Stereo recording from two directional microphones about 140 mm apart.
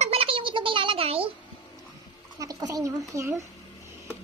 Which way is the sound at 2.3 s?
25° right (ahead or behind).